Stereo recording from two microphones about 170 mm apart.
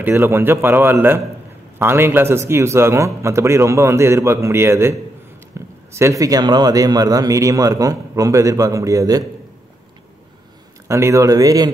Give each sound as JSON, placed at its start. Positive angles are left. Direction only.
{"t": 0.0, "sound": "a man's voice", "side_deg": -15}
{"t": 5.5, "sound": "a sound", "side_deg": -15}
{"t": 5.9, "sound": "a man's voice", "side_deg": -20}
{"t": 10.9, "sound": "a man's voice", "side_deg": -15}